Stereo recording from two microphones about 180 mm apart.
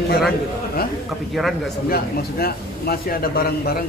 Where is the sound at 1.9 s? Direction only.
60° left (ahead or behind).